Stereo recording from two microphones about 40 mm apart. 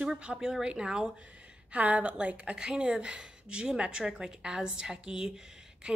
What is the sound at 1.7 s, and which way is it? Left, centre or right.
A woman's voice, right.